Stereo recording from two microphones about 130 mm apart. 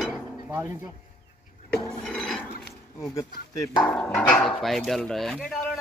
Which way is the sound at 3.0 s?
25° left (ahead or behind).